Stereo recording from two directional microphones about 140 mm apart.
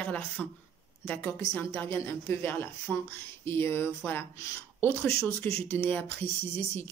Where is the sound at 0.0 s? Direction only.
10° left (ahead or behind).